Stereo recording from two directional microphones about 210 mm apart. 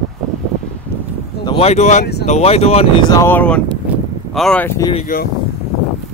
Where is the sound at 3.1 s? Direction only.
10° left (ahead or behind).